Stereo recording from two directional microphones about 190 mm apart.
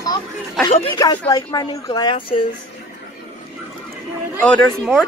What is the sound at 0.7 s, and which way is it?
Speech, 25° left (ahead or behind).